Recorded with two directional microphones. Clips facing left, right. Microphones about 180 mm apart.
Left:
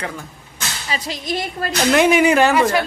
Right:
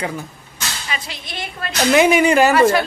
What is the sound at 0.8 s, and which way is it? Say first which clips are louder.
Speech: left 10 dB; 40° left (ahead or behind).